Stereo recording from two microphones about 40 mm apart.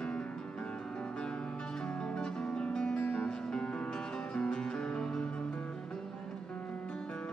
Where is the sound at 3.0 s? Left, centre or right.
Left.